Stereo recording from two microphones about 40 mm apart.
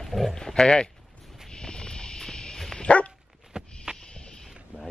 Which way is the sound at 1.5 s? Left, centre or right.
Left.